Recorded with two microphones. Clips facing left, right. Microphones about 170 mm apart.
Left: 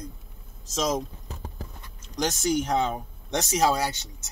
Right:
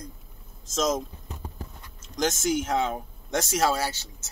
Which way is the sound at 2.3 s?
5° right (ahead or behind).